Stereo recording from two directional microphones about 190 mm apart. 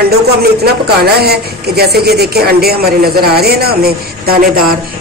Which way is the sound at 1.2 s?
55° right (ahead or behind).